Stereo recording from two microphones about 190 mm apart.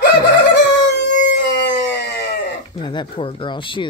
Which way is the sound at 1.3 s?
65° left (ahead or behind).